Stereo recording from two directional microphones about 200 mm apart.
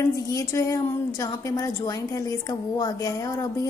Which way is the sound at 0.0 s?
15° left (ahead or behind).